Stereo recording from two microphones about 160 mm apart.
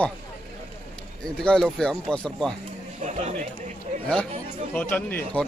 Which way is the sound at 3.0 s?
45° right (ahead or behind).